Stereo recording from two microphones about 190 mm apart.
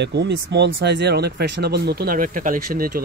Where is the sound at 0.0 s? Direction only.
65° right (ahead or behind).